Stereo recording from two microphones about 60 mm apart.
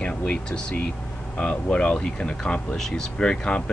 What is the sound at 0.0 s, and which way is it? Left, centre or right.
Speech, centre.